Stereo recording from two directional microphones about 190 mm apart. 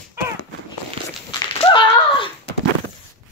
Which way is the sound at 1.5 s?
30° left (ahead or behind).